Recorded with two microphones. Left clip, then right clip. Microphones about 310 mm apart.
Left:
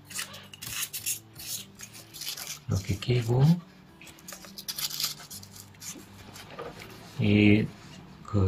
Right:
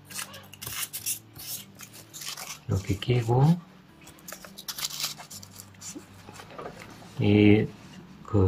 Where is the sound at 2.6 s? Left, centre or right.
Centre.